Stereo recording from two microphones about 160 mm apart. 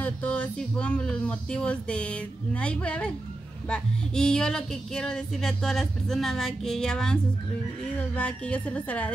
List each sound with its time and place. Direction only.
0.0 s speech: 10° left (ahead or behind)
3.6 s a sound: 5° left (ahead or behind)
8.1 s speech: 10° left (ahead or behind)